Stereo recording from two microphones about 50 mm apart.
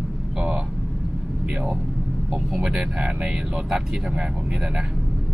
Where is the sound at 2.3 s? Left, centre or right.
Centre.